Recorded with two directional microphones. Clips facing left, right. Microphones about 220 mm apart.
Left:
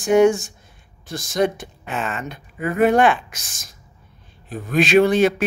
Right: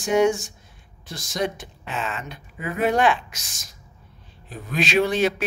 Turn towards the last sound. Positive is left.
turn(degrees=50)  # may be behind; listen again after turning